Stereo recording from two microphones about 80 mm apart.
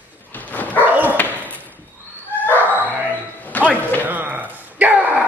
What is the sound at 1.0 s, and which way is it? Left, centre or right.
Dog, left.